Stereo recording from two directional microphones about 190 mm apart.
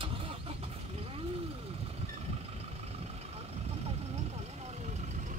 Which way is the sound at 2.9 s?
35° right (ahead or behind).